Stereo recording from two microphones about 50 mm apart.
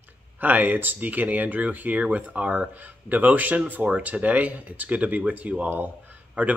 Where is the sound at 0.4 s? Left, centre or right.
Right.